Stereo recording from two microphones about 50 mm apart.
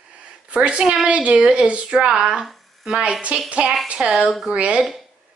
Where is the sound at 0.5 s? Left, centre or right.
Right.